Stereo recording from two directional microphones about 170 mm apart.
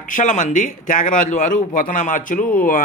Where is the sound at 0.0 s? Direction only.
50° left (ahead or behind).